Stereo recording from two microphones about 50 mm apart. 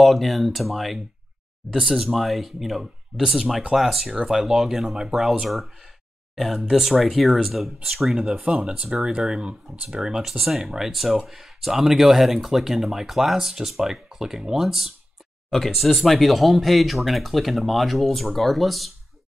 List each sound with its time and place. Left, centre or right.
0.0 s speech: centre
8.2 s speech: right; by 18.9 s centre